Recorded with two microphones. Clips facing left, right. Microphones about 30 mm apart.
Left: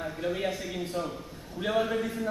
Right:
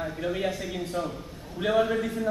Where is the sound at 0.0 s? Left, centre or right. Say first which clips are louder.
Right 2 dB; centre.